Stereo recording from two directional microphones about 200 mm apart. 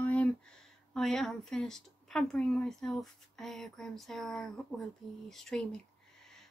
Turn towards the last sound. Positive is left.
turn(degrees=5)  # may be behind; listen again after turning